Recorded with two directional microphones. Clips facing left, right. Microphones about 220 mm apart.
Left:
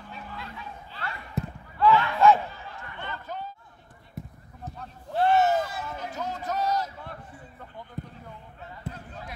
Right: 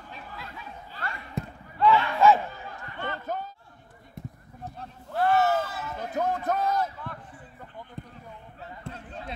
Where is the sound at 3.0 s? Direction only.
45° right (ahead or behind).